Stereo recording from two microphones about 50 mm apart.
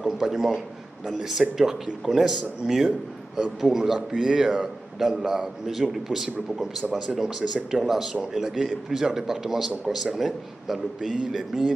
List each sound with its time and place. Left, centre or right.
0.0 s a man's voice: centre